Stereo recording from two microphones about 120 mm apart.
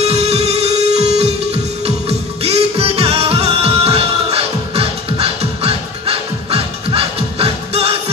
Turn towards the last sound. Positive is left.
turn(degrees=-55)  # may be behind; listen again after turning